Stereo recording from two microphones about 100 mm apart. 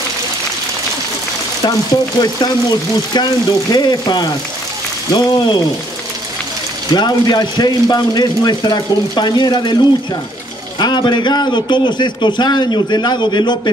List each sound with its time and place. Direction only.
2.1 s speech: 45° left (ahead or behind)
6.9 s speech: 45° left (ahead or behind)
10.8 s speech: 50° left (ahead or behind)